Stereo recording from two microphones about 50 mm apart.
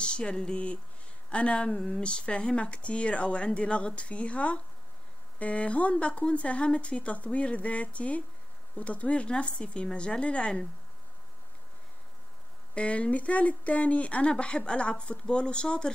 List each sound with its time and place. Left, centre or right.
0.0 s speech: left
12.7 s speech: left